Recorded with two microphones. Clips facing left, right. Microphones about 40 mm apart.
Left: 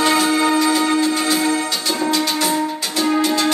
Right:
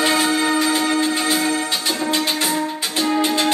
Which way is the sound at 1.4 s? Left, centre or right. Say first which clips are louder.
Left 1 dB; centre.